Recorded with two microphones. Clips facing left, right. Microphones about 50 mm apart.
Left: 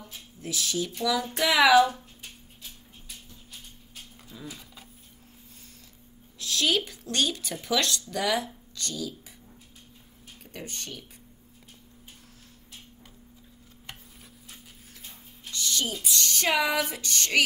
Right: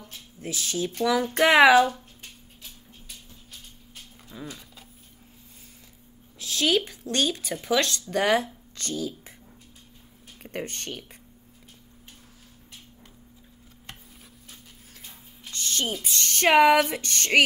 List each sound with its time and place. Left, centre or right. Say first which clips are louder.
0.4 s speech: right 1 dB; right
4.3 s dog: right 3 dB; right
6.4 s a woman's voice: right 2 dB; right
10.4 s speech: right 6 dB; right
15.5 s speech: right 1 dB; right